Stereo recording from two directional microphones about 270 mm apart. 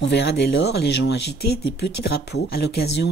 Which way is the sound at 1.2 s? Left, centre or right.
Left.